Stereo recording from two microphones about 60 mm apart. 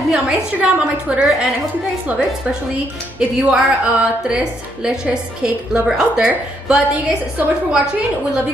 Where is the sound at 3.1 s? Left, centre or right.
Centre.